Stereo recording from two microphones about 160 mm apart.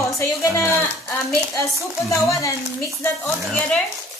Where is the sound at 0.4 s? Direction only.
20° left (ahead or behind).